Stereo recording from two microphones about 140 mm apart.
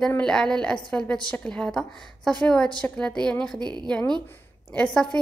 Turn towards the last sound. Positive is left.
turn(degrees=10)  # may be behind; listen again after turning